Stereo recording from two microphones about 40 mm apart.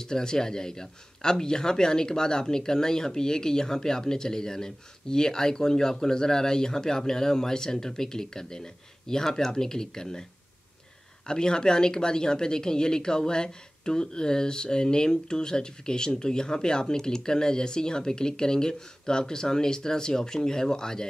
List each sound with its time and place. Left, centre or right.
0.0 s speech: centre
11.2 s speech: centre